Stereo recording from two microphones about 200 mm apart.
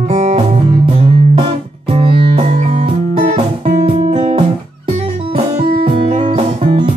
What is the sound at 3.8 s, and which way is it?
Music, 25° right (ahead or behind).